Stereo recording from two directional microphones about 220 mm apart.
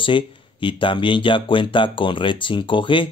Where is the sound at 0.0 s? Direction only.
20° left (ahead or behind).